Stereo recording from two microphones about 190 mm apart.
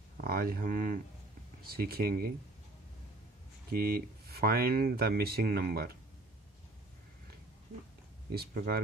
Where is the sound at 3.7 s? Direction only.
55° right (ahead or behind).